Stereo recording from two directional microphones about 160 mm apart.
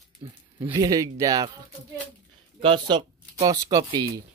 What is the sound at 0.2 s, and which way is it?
Speech, 15° right (ahead or behind).